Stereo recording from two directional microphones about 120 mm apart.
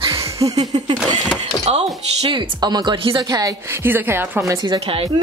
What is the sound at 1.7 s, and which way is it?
Speech, 60° right (ahead or behind).